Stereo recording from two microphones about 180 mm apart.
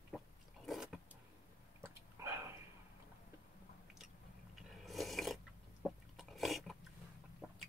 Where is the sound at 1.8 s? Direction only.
15° right (ahead or behind).